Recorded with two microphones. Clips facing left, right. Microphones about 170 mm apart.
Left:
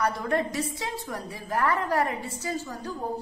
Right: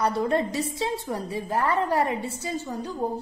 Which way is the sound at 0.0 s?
30° right (ahead or behind).